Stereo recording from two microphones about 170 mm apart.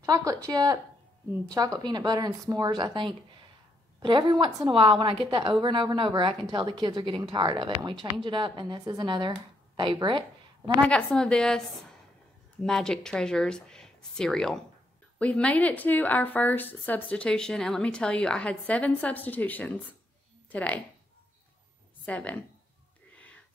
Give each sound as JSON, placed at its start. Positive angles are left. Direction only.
{"t": 0.0, "sound": "a woman's voice", "side_deg": -20}
{"t": 10.9, "sound": "speech", "side_deg": 5}
{"t": 12.6, "sound": "a woman's voice", "side_deg": 5}
{"t": 22.0, "sound": "speech", "side_deg": 10}